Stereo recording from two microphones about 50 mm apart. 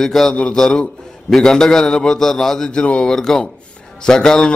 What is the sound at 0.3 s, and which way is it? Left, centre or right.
A man's voice, left.